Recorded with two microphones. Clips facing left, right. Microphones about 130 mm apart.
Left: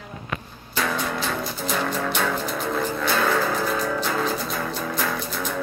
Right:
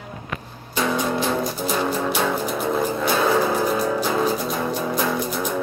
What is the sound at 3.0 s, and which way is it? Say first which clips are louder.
Music: right 3 dB; 15° right (ahead or behind).